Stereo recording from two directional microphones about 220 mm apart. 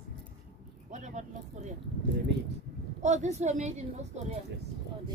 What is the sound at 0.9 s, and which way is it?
Speech, 35° right (ahead or behind).